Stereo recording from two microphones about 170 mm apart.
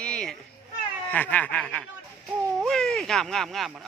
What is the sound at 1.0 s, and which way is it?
A man's voice, 10° left (ahead or behind).